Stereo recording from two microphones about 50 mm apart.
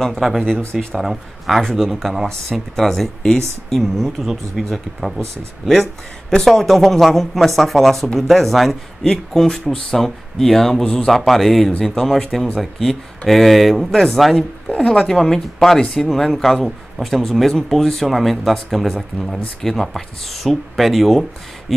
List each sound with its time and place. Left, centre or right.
0.2 s speech: centre
4.6 s speech: centre
6.3 s speech: centre
10.8 s speech: centre
11.1 s speech: centre
14.7 s speech: centre